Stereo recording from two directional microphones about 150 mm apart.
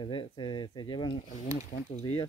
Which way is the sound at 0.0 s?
35° left (ahead or behind).